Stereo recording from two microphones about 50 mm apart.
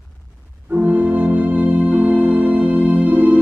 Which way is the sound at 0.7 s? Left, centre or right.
Right.